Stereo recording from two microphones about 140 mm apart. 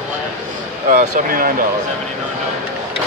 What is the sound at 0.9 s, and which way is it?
Speech, 75° right (ahead or behind).